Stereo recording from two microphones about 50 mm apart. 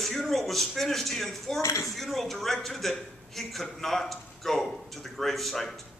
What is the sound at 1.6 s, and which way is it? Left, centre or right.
Speech, left.